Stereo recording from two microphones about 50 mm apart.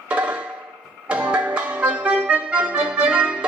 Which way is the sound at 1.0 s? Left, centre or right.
Right.